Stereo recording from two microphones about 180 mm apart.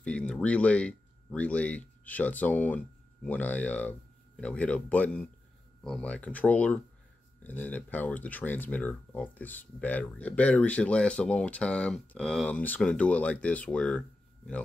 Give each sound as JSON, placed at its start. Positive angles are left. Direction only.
{"t": 0.0, "sound": "speech", "side_deg": 5}